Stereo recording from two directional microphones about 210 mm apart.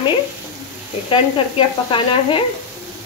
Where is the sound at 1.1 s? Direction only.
25° left (ahead or behind).